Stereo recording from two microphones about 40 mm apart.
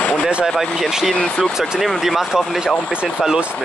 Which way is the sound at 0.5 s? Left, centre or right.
Centre.